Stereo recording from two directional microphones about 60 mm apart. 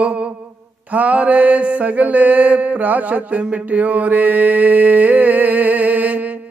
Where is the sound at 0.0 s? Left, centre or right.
Centre.